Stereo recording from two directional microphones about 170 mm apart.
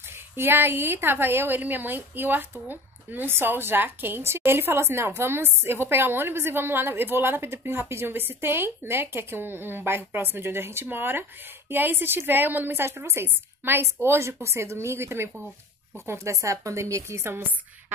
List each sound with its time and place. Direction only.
0.1 s a woman's voice: 15° right (ahead or behind)